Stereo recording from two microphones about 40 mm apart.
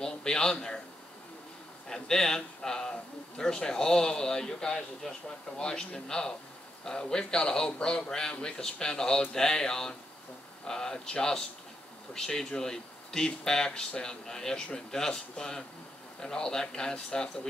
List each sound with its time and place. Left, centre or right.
0.0 s speech: centre
1.9 s a man's voice: centre